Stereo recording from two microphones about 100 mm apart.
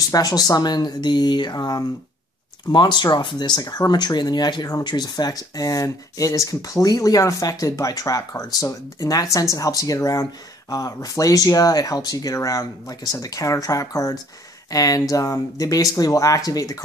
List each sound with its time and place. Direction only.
0.1 s speech: 40° left (ahead or behind)